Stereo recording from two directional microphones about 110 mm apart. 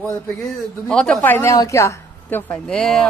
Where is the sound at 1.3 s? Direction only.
25° left (ahead or behind).